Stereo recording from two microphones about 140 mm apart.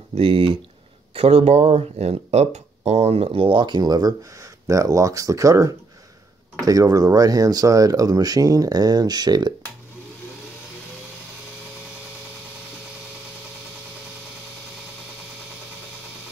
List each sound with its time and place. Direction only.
0.1 s speech: 40° right (ahead or behind)